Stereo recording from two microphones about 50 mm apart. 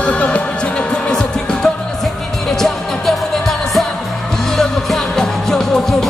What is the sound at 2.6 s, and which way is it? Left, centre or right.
Music, centre.